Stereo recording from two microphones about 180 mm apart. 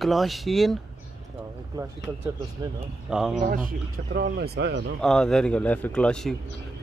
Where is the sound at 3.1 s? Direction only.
5° right (ahead or behind).